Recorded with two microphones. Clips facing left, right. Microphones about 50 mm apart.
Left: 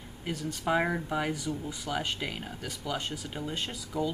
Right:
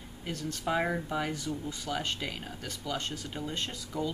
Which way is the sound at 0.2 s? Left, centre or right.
Centre.